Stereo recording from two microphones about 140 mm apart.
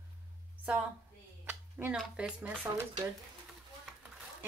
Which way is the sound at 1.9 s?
Centre (ahead or behind).